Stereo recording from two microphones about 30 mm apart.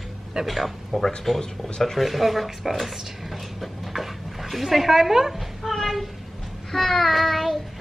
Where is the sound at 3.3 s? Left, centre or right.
Centre.